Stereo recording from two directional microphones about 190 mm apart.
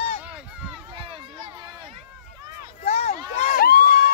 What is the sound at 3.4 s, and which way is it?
Crowd, 50° left (ahead or behind).